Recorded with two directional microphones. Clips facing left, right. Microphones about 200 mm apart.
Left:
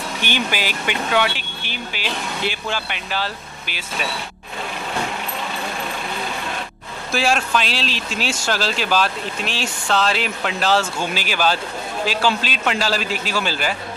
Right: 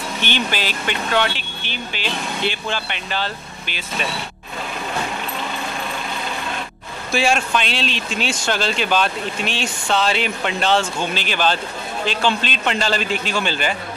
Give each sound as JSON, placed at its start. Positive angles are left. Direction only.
{"t": 0.2, "sound": "speech", "side_deg": 10}
{"t": 7.1, "sound": "speech", "side_deg": 0}